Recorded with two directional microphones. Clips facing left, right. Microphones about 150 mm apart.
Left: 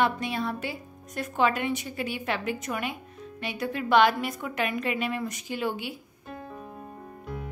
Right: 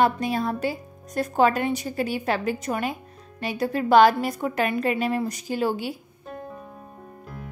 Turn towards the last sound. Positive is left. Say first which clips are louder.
# right 5 dB
turn(degrees=-35)  # may be behind; listen again after turning